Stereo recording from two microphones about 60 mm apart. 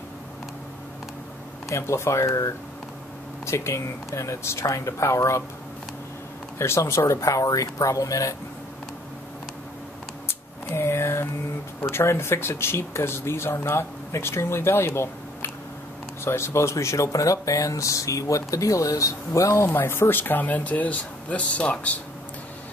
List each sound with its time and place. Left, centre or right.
1.7 s speech: left
4.6 s speech: left
6.6 s speech: left
10.2 s a sound: left
11.8 s speech: left
19.7 s speech: left